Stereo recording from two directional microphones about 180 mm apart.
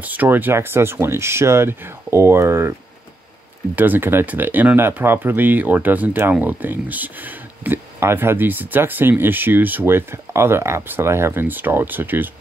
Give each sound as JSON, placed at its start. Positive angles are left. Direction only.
{"t": 0.0, "sound": "speech", "side_deg": -10}
{"t": 3.7, "sound": "speech", "side_deg": -10}